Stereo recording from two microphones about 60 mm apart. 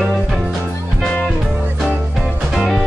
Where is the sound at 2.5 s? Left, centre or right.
Centre.